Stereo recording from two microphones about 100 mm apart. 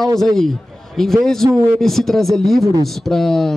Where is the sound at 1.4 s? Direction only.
25° right (ahead or behind).